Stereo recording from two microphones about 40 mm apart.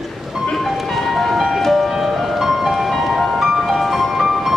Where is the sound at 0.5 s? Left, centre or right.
Centre.